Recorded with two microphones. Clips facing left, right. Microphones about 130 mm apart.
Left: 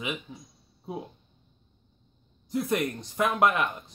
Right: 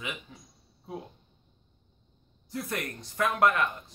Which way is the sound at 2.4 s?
20° left (ahead or behind).